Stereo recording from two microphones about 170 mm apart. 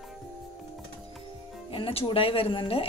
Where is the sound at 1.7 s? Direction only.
35° left (ahead or behind).